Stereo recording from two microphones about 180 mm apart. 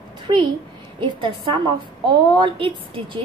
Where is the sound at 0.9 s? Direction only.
25° right (ahead or behind).